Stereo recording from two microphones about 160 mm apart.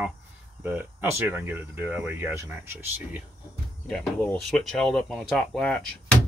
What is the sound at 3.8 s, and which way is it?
Speech, 5° left (ahead or behind).